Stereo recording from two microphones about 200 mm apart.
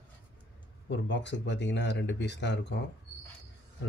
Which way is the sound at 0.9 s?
60° left (ahead or behind).